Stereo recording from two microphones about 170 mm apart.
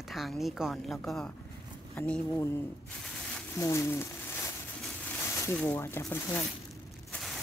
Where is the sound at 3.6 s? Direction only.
15° left (ahead or behind).